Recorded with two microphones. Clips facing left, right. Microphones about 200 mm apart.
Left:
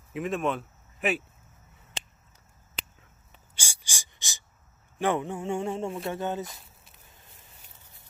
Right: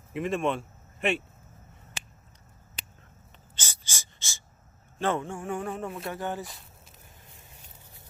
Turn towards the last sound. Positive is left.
turn(degrees=20)  # may be behind; listen again after turning